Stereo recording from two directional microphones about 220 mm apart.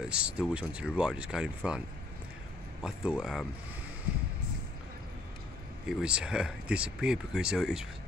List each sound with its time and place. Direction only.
0.0 s speech: 5° right (ahead or behind)
2.8 s speech: 5° right (ahead or behind)
5.9 s speech: 5° right (ahead or behind)